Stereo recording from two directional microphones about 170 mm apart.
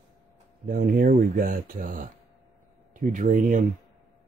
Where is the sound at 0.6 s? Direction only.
55° right (ahead or behind).